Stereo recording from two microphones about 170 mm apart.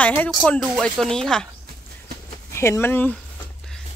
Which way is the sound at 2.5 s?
15° left (ahead or behind).